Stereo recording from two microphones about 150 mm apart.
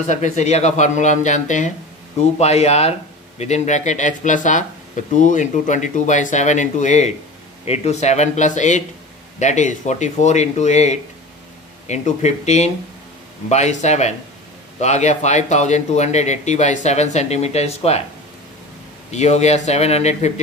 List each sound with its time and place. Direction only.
0.0 s speech: 55° left (ahead or behind)
19.0 s speech: 50° left (ahead or behind)